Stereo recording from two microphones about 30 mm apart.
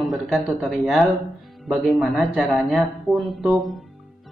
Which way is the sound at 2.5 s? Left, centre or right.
Centre.